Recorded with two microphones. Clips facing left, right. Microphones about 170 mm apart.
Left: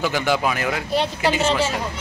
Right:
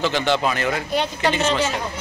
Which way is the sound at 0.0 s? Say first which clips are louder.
Right 1 dB; 10° left (ahead or behind).